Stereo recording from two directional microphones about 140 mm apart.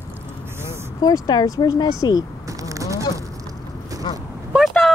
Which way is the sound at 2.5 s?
25° right (ahead or behind).